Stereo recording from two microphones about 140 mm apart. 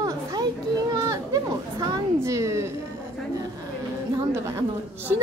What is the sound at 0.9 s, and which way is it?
Chatter, 25° right (ahead or behind).